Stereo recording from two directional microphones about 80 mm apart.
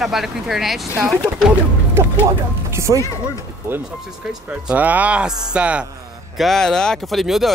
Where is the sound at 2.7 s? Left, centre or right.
Right.